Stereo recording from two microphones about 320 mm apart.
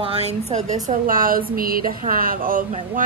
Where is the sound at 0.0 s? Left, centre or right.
Centre.